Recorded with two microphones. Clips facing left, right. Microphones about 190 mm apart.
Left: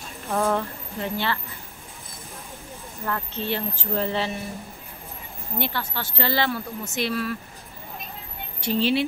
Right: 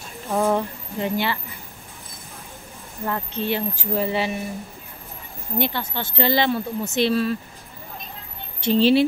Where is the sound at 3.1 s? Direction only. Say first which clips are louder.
Right 3 dB; 15° right (ahead or behind).